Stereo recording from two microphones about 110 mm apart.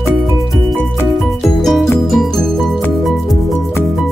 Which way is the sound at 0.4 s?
Centre (ahead or behind).